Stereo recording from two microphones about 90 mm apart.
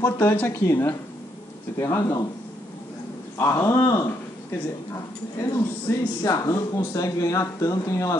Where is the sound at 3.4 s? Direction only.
35° left (ahead or behind).